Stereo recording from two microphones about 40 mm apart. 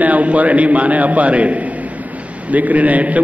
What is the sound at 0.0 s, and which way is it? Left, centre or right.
A man's voice, right.